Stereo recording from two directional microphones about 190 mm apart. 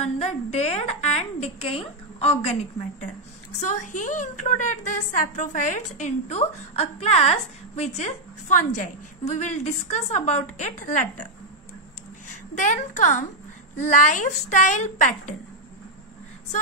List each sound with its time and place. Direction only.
0.0 s a woman's voice: 35° left (ahead or behind)
3.5 s a woman's voice: 40° left (ahead or behind)
12.3 s a woman's voice: 40° left (ahead or behind)